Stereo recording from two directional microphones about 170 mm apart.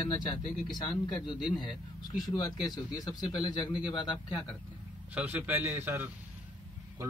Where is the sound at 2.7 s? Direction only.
25° left (ahead or behind).